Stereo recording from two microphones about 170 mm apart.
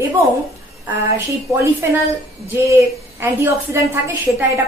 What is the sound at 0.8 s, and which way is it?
A woman's voice, 15° right (ahead or behind).